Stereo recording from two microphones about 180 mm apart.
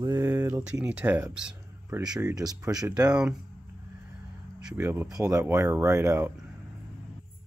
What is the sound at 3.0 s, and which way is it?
Speech, 5° right (ahead or behind).